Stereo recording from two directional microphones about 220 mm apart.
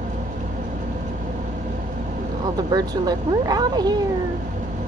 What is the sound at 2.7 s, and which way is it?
Speech, 15° right (ahead or behind).